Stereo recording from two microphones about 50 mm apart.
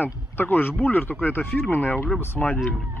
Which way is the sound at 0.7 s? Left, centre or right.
Left.